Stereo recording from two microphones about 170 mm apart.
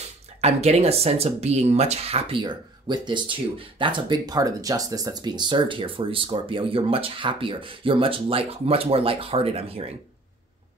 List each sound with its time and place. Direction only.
0.4 s speech: 40° right (ahead or behind)